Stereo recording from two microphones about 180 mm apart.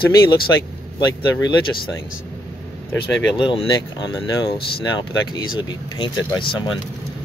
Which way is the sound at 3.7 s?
20° left (ahead or behind).